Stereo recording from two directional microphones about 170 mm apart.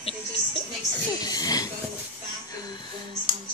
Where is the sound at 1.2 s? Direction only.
20° left (ahead or behind).